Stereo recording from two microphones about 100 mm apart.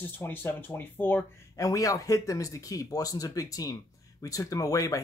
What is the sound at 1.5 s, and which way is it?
Speech, 35° left (ahead or behind).